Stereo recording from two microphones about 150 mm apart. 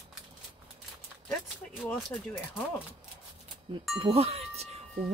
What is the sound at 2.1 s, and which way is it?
Speech, 15° left (ahead or behind).